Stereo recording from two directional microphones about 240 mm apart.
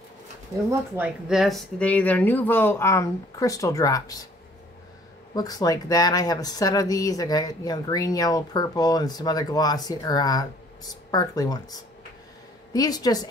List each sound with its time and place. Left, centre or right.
0.7 s speech: centre
5.3 s speech: centre